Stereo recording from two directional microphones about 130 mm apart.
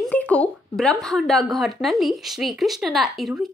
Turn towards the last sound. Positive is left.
turn(degrees=0)  # may be behind; listen again after turning